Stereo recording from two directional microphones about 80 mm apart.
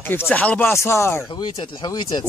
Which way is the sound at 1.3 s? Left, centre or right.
Left.